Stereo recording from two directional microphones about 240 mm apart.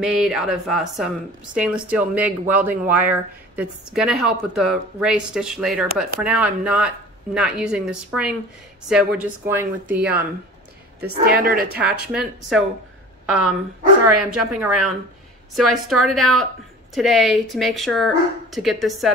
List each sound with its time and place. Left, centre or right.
0.0 s speech: centre
11.2 s a woman's voice: right
12.1 s speech: centre
14.3 s speech: centre